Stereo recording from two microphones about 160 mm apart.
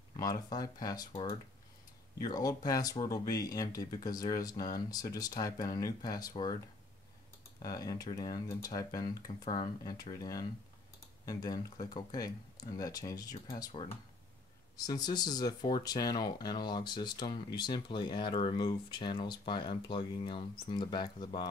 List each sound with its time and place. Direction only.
0.2 s speech: 25° left (ahead or behind)
2.1 s speech: 25° left (ahead or behind)
7.6 s speech: 25° left (ahead or behind)